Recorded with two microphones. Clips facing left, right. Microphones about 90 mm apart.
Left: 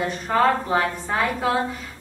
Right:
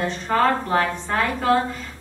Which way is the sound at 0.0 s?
5° left (ahead or behind).